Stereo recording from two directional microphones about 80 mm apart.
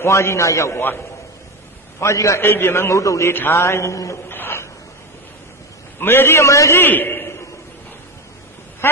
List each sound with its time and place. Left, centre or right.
0.0 s a man's voice: left
2.0 s a man's voice: left
2.4 s a man's voice: left
4.3 s a sound: left
5.9 s a man's voice: left
6.8 s a man's voice: left